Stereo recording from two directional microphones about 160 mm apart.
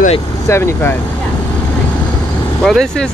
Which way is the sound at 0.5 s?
15° left (ahead or behind).